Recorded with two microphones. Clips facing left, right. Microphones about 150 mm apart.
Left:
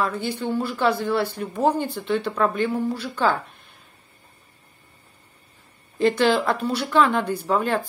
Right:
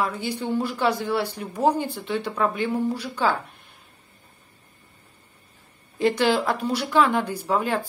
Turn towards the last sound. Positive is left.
turn(degrees=-10)  # may be behind; listen again after turning